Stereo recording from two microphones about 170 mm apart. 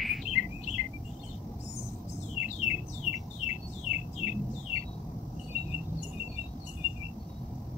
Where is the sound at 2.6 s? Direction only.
40° left (ahead or behind).